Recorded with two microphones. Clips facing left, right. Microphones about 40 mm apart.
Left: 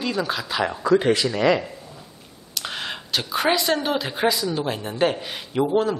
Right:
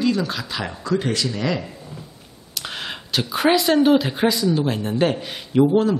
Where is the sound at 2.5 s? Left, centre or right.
Centre.